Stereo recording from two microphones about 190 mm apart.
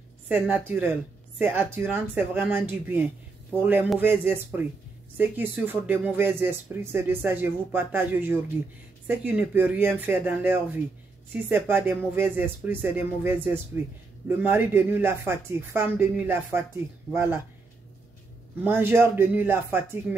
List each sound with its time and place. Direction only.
0.3 s speech: 10° right (ahead or behind)
18.6 s speech: 10° right (ahead or behind)